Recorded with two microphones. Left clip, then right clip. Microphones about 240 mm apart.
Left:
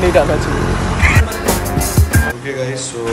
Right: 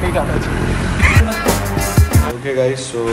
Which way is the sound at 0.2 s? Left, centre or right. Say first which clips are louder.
Left 7 dB; left.